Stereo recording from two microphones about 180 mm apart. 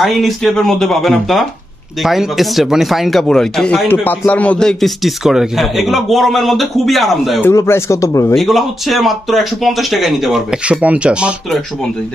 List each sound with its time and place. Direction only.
0.0 s speech: centre (ahead or behind)
7.4 s speech: 15° left (ahead or behind)
8.4 s speech: centre (ahead or behind)